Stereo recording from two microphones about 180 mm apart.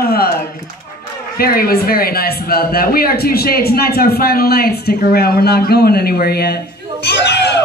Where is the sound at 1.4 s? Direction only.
55° left (ahead or behind).